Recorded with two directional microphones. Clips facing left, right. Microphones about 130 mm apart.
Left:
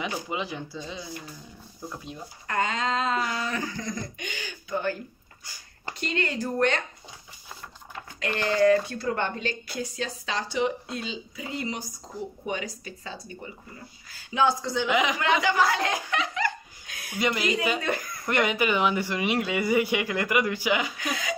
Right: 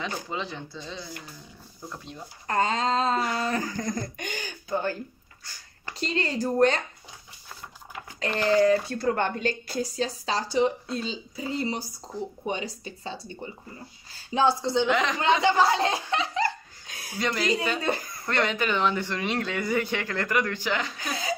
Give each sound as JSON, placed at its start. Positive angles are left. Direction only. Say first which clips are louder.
{"t": 0.0, "sound": "speech", "louder": "left 1 dB", "side_deg": 10}
{"t": 2.4, "sound": "speech", "louder": "right 3 dB", "side_deg": -35}
{"t": 5.9, "sound": "speech", "louder": "right 1 dB", "side_deg": -30}
{"t": 8.2, "sound": "speech", "louder": "right 1 dB", "side_deg": -35}
{"t": 14.9, "sound": "speech", "louder": "even", "side_deg": 5}
{"t": 15.1, "sound": "speech", "louder": "right 2 dB", "side_deg": -30}
{"t": 17.2, "sound": "speech", "louder": "left 1 dB", "side_deg": 10}
{"t": 17.7, "sound": "speech", "louder": "right 1 dB", "side_deg": -30}
{"t": 18.2, "sound": "speech", "louder": "left 2 dB", "side_deg": 10}
{"t": 21.0, "sound": "speech", "louder": "even", "side_deg": -35}